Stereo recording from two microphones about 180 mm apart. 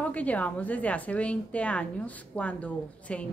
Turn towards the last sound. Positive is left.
turn(degrees=5)  # may be behind; listen again after turning